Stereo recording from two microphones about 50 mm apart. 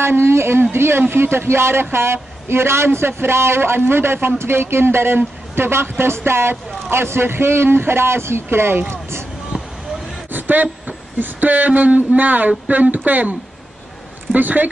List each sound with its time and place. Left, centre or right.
0.0 s speech: right
9.5 s vehicle: right
10.3 s speech: right